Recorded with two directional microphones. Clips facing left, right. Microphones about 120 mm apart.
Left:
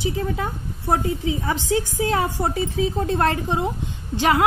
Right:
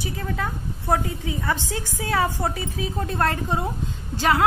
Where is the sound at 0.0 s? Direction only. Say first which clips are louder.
Left 4 dB; 20° left (ahead or behind).